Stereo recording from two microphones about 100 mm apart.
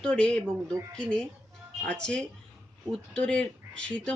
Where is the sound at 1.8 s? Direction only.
10° left (ahead or behind).